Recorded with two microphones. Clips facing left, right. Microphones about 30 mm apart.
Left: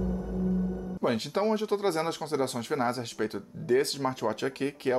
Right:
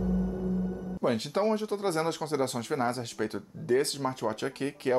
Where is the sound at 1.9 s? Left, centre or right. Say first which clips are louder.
Even; centre.